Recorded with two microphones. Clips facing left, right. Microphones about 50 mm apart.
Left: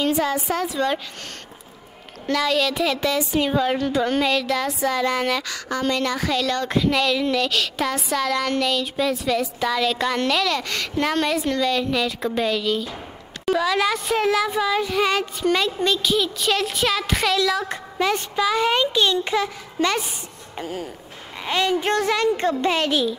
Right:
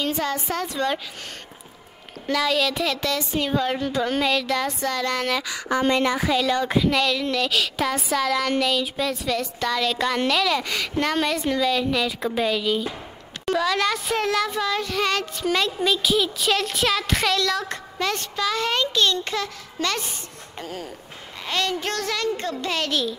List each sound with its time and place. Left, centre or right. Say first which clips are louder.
0.0 s speech: left 4 dB; centre
2.2 s speech: left 1 dB; centre
5.4 s speech: right 2 dB; centre